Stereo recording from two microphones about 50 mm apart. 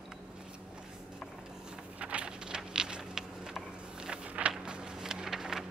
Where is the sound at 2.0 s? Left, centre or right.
Right.